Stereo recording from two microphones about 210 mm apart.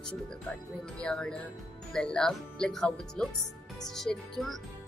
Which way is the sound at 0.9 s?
5° left (ahead or behind).